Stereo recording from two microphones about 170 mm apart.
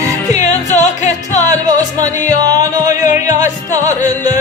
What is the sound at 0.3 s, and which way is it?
Music, 45° left (ahead or behind).